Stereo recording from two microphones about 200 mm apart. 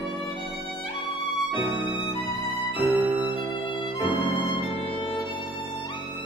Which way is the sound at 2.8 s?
10° right (ahead or behind).